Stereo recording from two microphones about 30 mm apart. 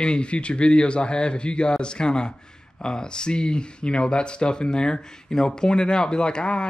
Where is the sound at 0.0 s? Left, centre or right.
Left.